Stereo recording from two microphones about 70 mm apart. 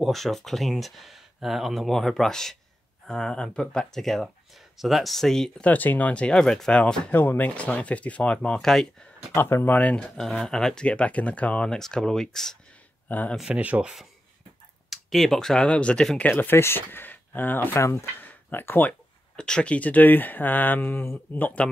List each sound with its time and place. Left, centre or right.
0.0 s speech: centre
5.6 s speech: left
7.1 s speech: left; by 9.1 s centre
9.4 s speech: left
9.7 s speech: centre
10.1 s speech: centre
13.1 s speech: left
13.5 s speech: centre
14.9 s speech: centre
16.3 s speech: left
18.2 s a sound: left
19.3 s speech: centre; by 21.5 s left